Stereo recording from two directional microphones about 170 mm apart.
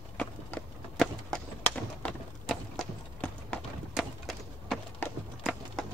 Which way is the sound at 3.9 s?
Centre (ahead or behind).